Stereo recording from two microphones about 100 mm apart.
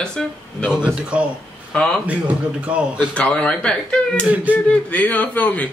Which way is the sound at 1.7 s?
10° left (ahead or behind).